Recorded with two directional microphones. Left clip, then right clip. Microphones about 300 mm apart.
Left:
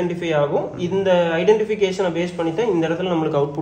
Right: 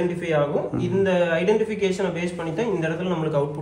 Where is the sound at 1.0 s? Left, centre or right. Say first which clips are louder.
Left 3 dB; centre.